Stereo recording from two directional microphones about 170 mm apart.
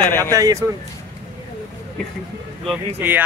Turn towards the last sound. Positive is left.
turn(degrees=-10)  # may be behind; listen again after turning